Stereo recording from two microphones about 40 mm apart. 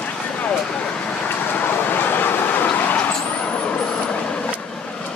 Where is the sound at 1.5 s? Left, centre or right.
Left.